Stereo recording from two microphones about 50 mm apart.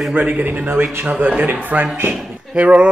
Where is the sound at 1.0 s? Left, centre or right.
Right.